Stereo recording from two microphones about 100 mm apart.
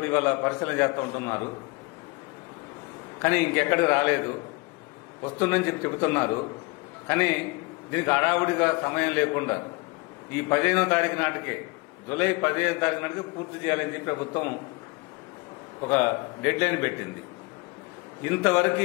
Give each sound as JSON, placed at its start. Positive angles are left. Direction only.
{"t": 0.0, "sound": "a man's voice", "side_deg": 25}
{"t": 3.2, "sound": "a man's voice", "side_deg": 20}
{"t": 5.4, "sound": "a man's voice", "side_deg": 20}
{"t": 16.0, "sound": "a man's voice", "side_deg": 20}
{"t": 18.2, "sound": "a man's voice", "side_deg": 20}